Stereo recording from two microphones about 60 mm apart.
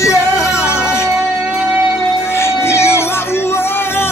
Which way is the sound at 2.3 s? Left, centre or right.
Left.